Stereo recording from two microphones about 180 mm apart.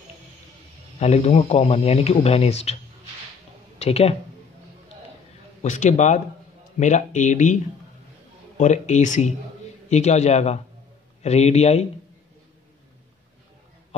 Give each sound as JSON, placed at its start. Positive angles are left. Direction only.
{"t": 0.9, "sound": "speech", "side_deg": 35}
{"t": 3.8, "sound": "speech", "side_deg": 35}
{"t": 5.6, "sound": "speech", "side_deg": 40}
{"t": 8.5, "sound": "speech", "side_deg": 40}